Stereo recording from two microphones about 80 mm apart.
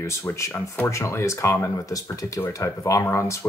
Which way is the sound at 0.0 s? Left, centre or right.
Left.